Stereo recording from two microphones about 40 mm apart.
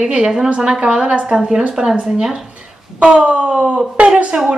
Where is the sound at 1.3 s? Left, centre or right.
Centre.